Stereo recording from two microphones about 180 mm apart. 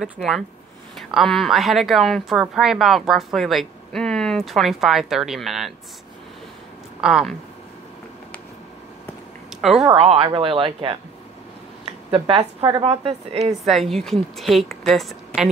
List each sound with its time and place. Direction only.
0.0 s speech: centre (ahead or behind)
7.0 s speech: 5° right (ahead or behind)
9.6 s speech: centre (ahead or behind)
9.9 s speech: 35° right (ahead or behind)
12.1 s a woman's voice: 35° right (ahead or behind)
13.7 s speech: centre (ahead or behind)